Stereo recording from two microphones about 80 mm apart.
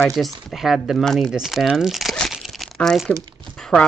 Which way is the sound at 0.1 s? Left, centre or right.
Centre.